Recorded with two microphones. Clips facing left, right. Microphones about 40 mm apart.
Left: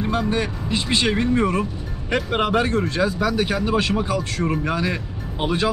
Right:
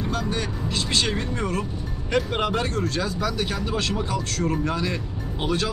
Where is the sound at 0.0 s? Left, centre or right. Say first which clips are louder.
Left 5 dB; left.